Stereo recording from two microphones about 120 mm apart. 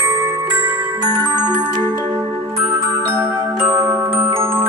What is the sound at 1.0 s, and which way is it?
Music, 35° right (ahead or behind).